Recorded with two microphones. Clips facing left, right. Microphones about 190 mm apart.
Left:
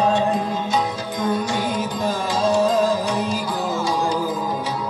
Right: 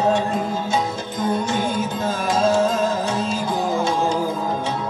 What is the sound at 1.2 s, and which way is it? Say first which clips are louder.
Music: right 1 dB; 25° right (ahead or behind).